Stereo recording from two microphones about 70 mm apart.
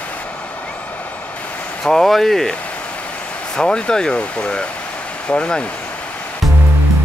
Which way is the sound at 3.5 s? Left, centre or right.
Centre.